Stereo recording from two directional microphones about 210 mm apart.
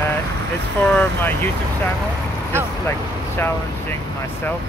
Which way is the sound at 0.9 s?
10° left (ahead or behind).